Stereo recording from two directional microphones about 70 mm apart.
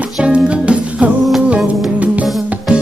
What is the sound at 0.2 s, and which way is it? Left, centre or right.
Music, centre.